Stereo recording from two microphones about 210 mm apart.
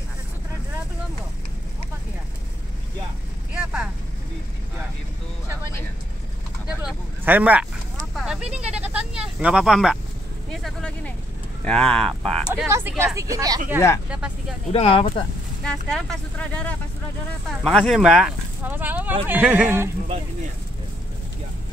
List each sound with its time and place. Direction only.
3.5 s vehicle: 5° right (ahead or behind)
6.9 s a sound: 10° right (ahead or behind)
11.6 s speech: 5° left (ahead or behind)
12.6 s speech: 10° right (ahead or behind)
13.7 s speech: 15° left (ahead or behind)
14.7 s speech: 25° left (ahead or behind)
15.6 s speech: 5° left (ahead or behind)